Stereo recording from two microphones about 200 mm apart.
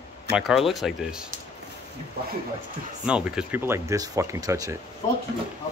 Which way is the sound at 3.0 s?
5° right (ahead or behind).